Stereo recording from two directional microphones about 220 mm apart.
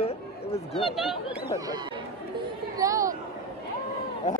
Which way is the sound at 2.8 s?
15° right (ahead or behind).